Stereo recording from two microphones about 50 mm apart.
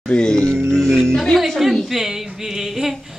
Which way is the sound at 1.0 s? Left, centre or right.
Centre.